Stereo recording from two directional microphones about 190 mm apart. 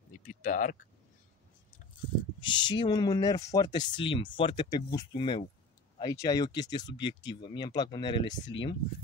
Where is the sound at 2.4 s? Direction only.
25° left (ahead or behind).